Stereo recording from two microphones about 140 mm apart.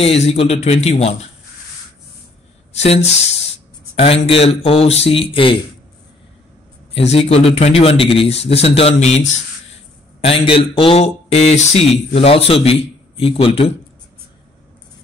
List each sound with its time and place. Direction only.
0.0 s speech: 45° left (ahead or behind)
2.7 s speech: 50° left (ahead or behind)
6.9 s a man's voice: 45° left (ahead or behind)